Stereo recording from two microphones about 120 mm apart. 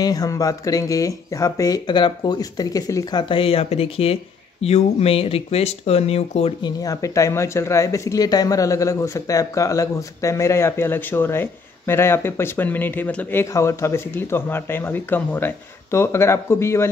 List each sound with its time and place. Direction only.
0.0 s speech: 30° left (ahead or behind); by 6.5 s 60° left (ahead or behind)
6.6 s speech: 30° left (ahead or behind)